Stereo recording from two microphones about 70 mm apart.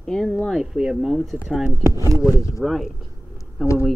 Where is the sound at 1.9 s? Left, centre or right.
Right.